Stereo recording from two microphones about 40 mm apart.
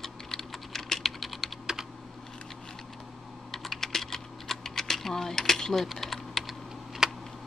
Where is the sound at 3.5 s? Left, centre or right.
Centre.